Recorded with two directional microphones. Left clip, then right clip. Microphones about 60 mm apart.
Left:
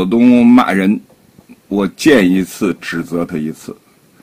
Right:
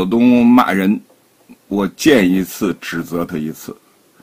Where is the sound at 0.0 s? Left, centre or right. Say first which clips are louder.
Left 2 dB; right.